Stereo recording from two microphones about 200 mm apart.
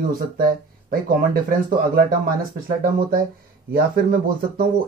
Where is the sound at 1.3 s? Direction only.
45° right (ahead or behind).